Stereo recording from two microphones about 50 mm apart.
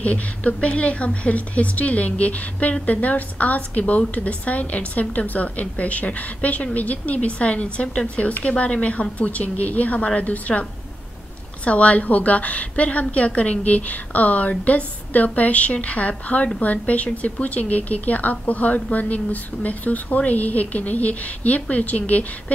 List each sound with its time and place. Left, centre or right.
0.0 s a woman's voice: left
11.6 s a woman's voice: left